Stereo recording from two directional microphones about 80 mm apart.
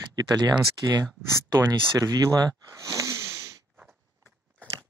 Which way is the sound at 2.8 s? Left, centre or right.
Right.